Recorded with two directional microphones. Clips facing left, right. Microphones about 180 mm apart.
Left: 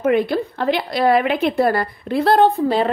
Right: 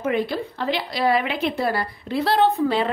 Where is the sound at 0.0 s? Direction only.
55° left (ahead or behind).